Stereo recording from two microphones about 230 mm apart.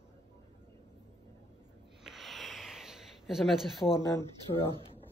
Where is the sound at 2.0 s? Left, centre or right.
Centre.